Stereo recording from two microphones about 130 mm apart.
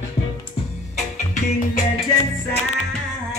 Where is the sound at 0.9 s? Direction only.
70° left (ahead or behind).